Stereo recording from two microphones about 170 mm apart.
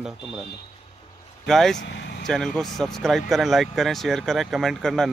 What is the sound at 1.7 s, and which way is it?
Speech, 90° left.